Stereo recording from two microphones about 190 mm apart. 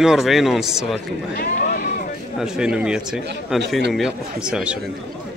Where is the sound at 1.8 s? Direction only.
50° left (ahead or behind).